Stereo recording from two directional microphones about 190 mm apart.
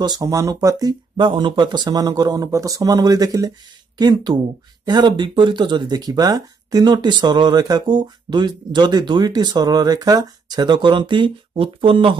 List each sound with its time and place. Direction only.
0.0 s speech: 20° right (ahead or behind)